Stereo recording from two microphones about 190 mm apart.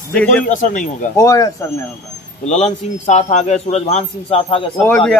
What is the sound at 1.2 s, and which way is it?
Speech, 15° left (ahead or behind).